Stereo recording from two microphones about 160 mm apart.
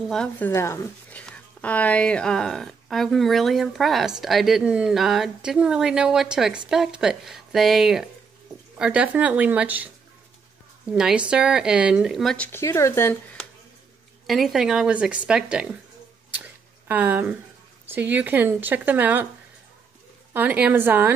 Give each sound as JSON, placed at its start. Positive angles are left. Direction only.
{"t": 0.1, "sound": "a woman's voice", "side_deg": 5}
{"t": 0.5, "sound": "a woman's voice", "side_deg": 20}
{"t": 10.9, "sound": "a woman's voice", "side_deg": -5}
{"t": 12.4, "sound": "speech", "side_deg": 15}
{"t": 14.2, "sound": "a woman's voice", "side_deg": 0}
{"t": 16.8, "sound": "speech", "side_deg": -10}
{"t": 20.3, "sound": "speech", "side_deg": -10}